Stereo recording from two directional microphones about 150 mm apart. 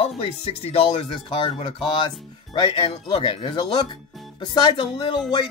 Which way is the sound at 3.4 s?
30° left (ahead or behind).